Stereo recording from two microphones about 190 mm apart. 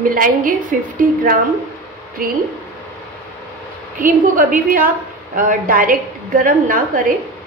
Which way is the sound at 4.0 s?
45° right (ahead or behind).